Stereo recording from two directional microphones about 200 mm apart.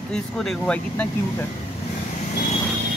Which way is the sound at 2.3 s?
35° left (ahead or behind).